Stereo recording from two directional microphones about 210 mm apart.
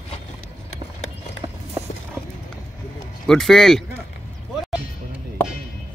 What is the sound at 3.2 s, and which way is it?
Speech, centre (ahead or behind).